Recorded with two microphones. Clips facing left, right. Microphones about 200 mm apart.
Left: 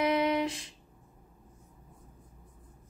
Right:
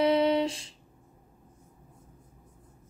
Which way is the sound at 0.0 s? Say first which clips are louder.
Right 4 dB; 30° right (ahead or behind).